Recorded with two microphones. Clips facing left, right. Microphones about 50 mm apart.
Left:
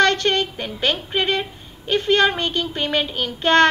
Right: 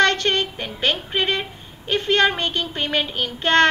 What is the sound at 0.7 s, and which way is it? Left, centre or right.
A woman's voice, centre.